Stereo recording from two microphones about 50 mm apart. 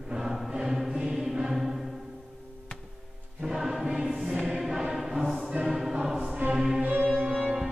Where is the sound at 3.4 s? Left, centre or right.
Centre.